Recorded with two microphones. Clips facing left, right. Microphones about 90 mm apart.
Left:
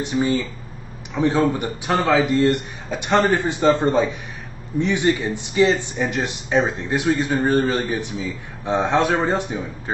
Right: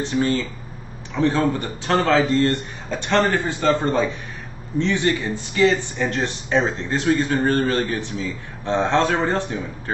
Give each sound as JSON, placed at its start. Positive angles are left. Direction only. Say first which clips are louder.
{"t": 0.0, "sound": "speech", "louder": "even", "side_deg": 15}